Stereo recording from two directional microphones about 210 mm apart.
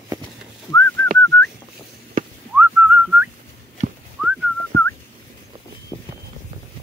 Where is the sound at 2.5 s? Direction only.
5° right (ahead or behind).